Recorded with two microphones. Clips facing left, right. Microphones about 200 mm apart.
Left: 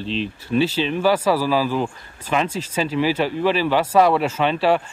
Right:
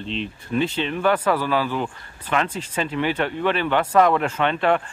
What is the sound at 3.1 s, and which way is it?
Speech, 10° left (ahead or behind).